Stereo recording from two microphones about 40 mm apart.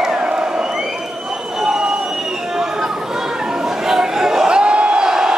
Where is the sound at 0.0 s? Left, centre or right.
Centre.